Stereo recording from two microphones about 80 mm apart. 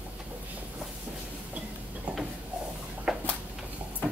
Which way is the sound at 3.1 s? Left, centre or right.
Centre.